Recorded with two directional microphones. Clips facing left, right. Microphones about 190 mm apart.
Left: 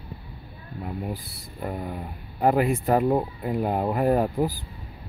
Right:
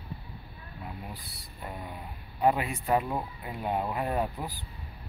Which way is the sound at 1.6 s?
50° left (ahead or behind).